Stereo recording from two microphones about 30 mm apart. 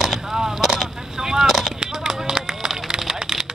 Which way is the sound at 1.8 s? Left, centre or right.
Right.